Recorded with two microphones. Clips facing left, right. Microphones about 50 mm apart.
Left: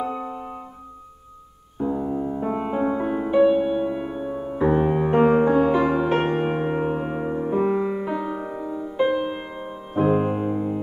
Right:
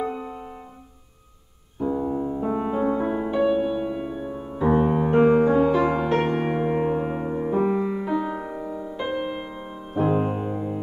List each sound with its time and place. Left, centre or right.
0.1 s music: centre
1.9 s music: centre
5.1 s music: left
6.9 s music: centre